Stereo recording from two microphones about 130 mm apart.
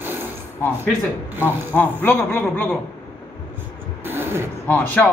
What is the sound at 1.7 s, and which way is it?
A man's voice, 15° left (ahead or behind).